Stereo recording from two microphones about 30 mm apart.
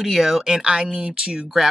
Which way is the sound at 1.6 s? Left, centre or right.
Centre.